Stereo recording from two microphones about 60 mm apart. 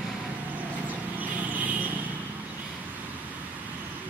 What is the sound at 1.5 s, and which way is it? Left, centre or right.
Vehicle, right.